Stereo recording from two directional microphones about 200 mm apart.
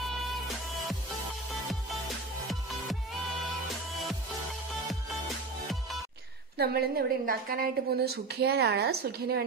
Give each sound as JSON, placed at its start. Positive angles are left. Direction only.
{"t": 6.6, "sound": "a woman's voice", "side_deg": -50}